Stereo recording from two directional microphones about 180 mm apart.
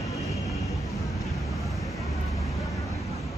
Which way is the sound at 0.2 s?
Centre (ahead or behind).